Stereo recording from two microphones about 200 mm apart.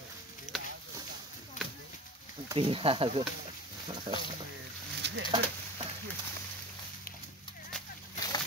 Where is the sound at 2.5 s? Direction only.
25° right (ahead or behind).